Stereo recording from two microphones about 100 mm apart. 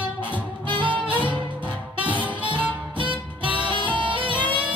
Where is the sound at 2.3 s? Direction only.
15° right (ahead or behind).